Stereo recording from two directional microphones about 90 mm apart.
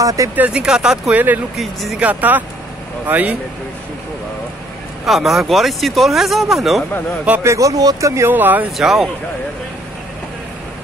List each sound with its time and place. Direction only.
0.0 s speech: 40° right (ahead or behind)
0.4 s speech: 10° right (ahead or behind)
2.0 s speech: 15° right (ahead or behind)
5.0 s speech: centre (ahead or behind)
7.4 s speech: 35° right (ahead or behind); by 8.6 s 20° right (ahead or behind)
8.7 s speech: centre (ahead or behind)